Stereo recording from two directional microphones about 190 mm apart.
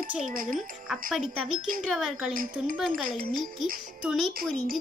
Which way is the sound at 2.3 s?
45° right (ahead or behind).